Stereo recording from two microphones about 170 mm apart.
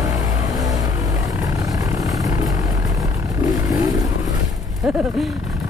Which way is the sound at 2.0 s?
20° right (ahead or behind).